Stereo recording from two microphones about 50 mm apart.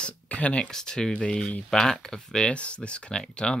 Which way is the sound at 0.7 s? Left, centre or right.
Centre.